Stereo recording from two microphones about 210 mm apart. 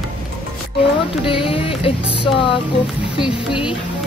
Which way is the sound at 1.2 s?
25° left (ahead or behind).